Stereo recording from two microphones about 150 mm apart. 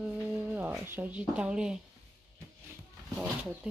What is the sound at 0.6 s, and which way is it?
Speech, 15° right (ahead or behind).